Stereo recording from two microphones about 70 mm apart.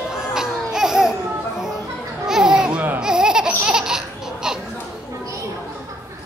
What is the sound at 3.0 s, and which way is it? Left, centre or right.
Laughter, centre.